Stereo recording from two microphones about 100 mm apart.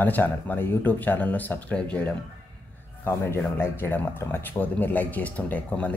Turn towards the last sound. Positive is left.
turn(degrees=15)  # may be behind; listen again after turning